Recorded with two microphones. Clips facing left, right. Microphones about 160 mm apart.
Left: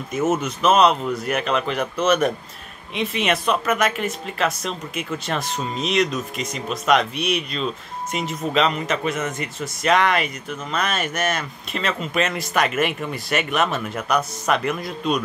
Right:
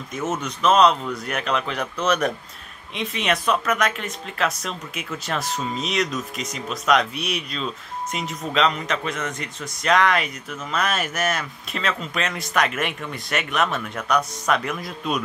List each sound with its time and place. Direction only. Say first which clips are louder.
0.1 s speech: left 6 dB; 5° left (ahead or behind)